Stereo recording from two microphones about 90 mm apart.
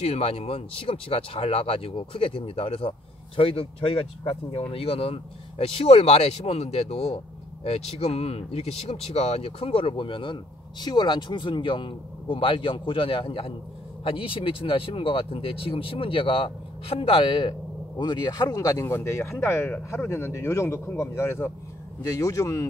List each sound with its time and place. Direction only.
0.1 s speech: 90° left
8.1 s speech: 90° left; by 18.9 s 40° left (ahead or behind)
18.9 s speech: 30° left (ahead or behind)
22.0 s speech: 40° left (ahead or behind)